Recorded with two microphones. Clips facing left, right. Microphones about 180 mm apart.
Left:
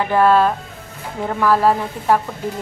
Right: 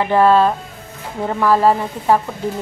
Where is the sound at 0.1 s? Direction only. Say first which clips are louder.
Right 1 dB; centre (ahead or behind).